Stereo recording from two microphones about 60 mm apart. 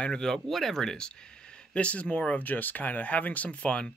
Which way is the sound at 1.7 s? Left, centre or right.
Left.